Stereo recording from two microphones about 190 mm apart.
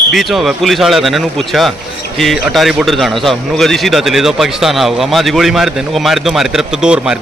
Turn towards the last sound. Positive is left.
turn(degrees=-5)  # may be behind; listen again after turning